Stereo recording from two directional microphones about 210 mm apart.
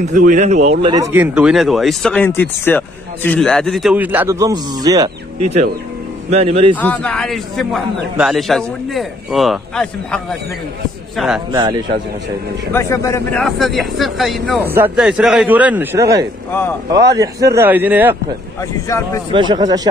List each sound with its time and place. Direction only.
0.1 s speech: 35° right (ahead or behind)
0.9 s speech: 10° right (ahead or behind)
6.3 s speech: 30° right (ahead or behind)
6.7 s speech: 5° left (ahead or behind)
12.7 s speech: 15° left (ahead or behind)
13.4 s speech: centre (ahead or behind)
14.6 s a man's voice: 10° right (ahead or behind)
16.5 s speech: 10° left (ahead or behind)
16.9 s a man's voice: 15° right (ahead or behind)
18.6 s speech: 15° left (ahead or behind)
19.3 s speech: 20° right (ahead or behind)